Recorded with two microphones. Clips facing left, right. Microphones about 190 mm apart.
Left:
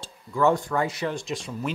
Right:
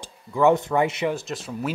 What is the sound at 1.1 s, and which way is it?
Speech, 5° right (ahead or behind).